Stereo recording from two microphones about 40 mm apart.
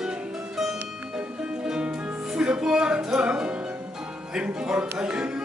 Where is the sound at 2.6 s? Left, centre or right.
Centre.